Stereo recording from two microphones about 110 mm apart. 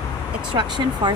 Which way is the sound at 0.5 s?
45° right (ahead or behind).